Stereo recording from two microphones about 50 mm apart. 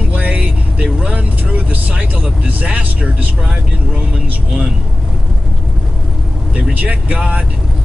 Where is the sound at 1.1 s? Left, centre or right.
Right.